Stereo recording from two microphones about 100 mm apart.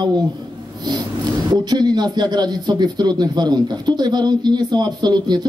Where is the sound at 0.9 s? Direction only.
45° right (ahead or behind).